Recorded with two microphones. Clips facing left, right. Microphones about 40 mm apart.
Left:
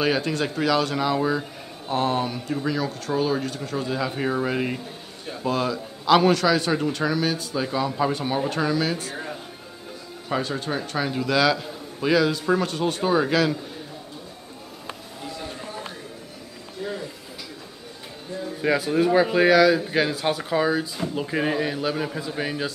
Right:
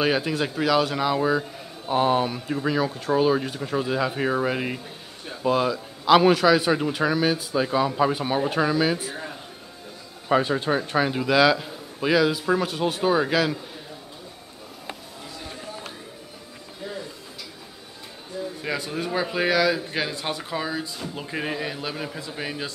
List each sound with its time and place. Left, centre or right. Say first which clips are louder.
0.0 s a man's voice: even; centre
10.2 s a man's voice: right 5 dB; centre
18.6 s speech: left 10 dB; centre